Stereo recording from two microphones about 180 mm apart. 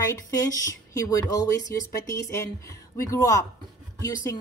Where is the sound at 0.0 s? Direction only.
20° left (ahead or behind).